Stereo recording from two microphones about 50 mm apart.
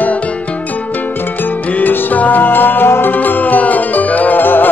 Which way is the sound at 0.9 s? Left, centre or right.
Left.